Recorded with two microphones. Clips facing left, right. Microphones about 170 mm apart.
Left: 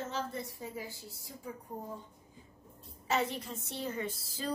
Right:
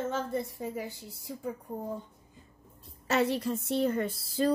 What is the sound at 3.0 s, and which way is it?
A woman's voice, 75° right (ahead or behind).